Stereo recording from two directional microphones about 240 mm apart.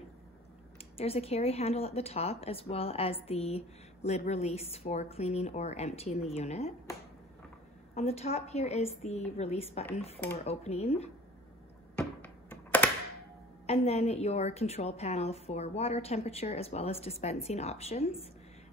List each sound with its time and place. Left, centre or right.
0.9 s speech: left
7.9 s speech: left
12.0 s a sound: centre
13.7 s speech: left